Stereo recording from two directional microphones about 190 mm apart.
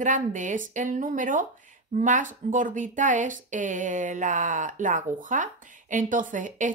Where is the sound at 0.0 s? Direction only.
40° right (ahead or behind).